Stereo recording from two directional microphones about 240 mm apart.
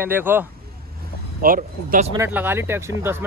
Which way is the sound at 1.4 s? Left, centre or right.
Right.